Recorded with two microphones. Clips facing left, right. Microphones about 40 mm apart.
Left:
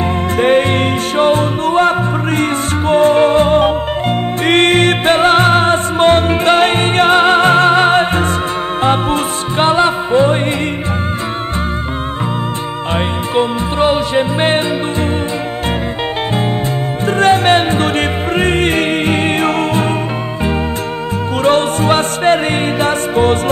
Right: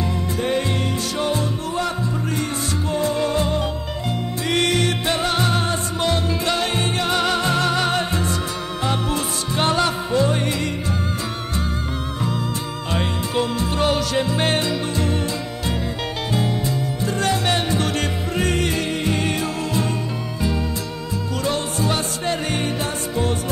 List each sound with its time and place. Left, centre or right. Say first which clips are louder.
0.4 s music: left 11 dB; left
12.9 s music: left 7 dB; left
17.0 s music: left 11 dB; left
21.5 s music: left 11 dB; left